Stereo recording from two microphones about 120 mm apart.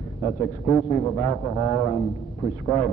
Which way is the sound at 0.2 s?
5° left (ahead or behind).